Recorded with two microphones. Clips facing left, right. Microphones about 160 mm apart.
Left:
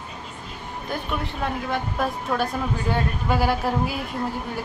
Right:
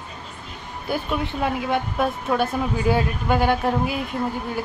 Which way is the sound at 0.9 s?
5° right (ahead or behind).